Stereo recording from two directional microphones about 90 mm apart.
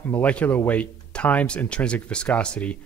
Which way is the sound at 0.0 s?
15° left (ahead or behind).